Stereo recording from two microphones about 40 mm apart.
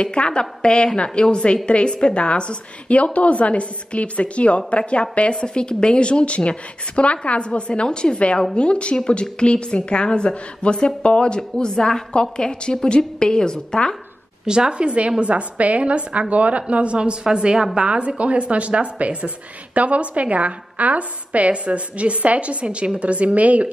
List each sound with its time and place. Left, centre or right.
0.0 s a woman's voice: left
14.4 s a woman's voice: centre; by 23.7 s right